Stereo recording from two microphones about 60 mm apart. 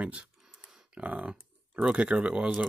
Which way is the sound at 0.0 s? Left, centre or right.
Centre.